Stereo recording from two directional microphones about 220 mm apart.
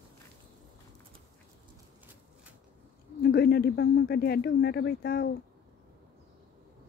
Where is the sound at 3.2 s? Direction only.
45° left (ahead or behind).